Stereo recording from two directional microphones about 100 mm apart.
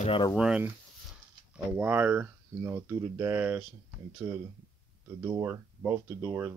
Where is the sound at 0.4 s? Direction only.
10° right (ahead or behind).